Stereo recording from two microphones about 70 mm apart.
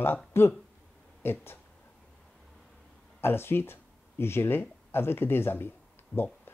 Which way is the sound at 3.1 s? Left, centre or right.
Left.